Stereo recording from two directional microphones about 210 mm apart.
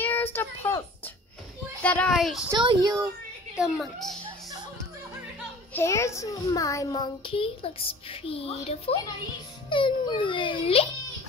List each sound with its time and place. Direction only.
0.0 s a sound: 10° left (ahead or behind)
1.8 s a woman's voice: 5° left (ahead or behind)
2.6 s a child's voice: 20° right (ahead or behind)
3.5 s a woman's voice: 5° right (ahead or behind)
4.2 s music: 20° right (ahead or behind)
5.7 s a child's voice: 10° left (ahead or behind)